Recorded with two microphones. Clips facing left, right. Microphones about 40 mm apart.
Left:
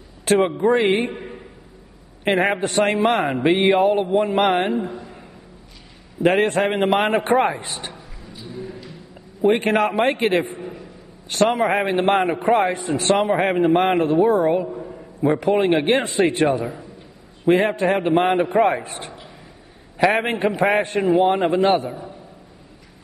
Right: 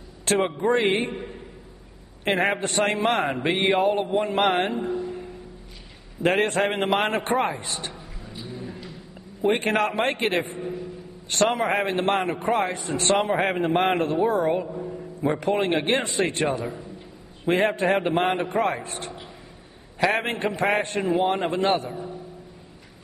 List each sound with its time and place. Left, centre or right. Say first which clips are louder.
0.2 s a man's voice: left 5 dB; centre
2.2 s a man's voice: left 4 dB; centre
6.2 s a man's voice: left 4 dB; centre
7.2 s a man's voice: left 6 dB; centre
9.4 s a man's voice: left 4 dB; centre
17.5 s a man's voice: left 4 dB; centre